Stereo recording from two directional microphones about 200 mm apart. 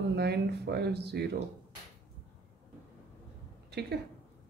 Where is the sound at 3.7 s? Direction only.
55° right (ahead or behind).